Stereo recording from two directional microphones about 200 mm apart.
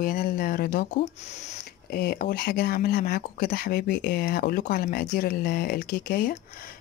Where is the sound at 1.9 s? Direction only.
50° left (ahead or behind).